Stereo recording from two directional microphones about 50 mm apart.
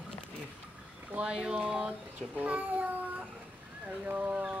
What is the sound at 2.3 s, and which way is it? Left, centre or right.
Speech, right.